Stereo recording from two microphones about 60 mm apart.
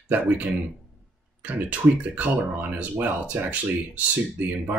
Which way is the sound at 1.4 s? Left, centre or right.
Right.